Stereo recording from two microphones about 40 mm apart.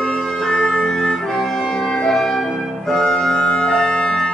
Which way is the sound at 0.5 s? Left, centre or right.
Left.